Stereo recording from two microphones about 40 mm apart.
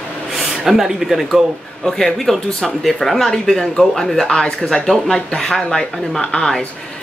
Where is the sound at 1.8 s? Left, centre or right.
Centre.